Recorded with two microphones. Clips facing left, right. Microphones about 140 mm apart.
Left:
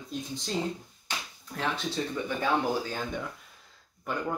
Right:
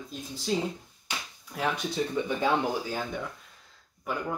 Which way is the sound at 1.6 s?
10° right (ahead or behind).